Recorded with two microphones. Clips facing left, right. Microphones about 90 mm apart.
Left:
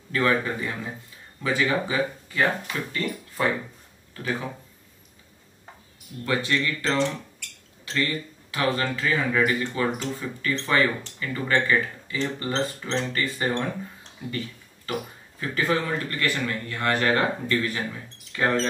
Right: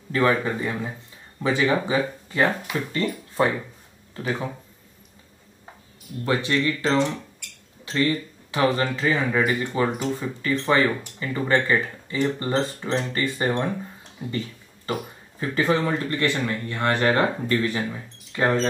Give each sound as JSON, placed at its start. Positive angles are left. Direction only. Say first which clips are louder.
{"t": 0.1, "sound": "speech", "louder": "right 2 dB", "side_deg": -25}
{"t": 6.2, "sound": "speech", "louder": "right 3 dB", "side_deg": -25}